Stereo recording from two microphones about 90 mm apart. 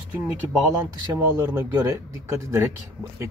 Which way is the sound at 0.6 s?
35° right (ahead or behind).